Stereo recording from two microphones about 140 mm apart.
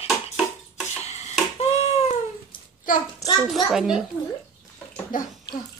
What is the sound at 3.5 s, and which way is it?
Speech, centre (ahead or behind).